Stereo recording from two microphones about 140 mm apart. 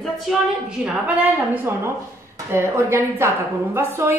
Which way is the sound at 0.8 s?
10° right (ahead or behind).